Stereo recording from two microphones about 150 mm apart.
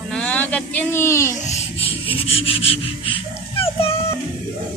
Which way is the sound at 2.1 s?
40° left (ahead or behind).